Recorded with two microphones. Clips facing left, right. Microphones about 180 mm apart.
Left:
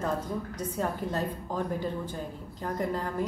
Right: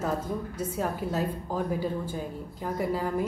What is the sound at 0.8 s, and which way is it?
A woman's voice, 5° right (ahead or behind).